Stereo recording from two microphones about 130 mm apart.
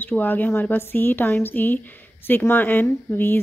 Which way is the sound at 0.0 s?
15° left (ahead or behind).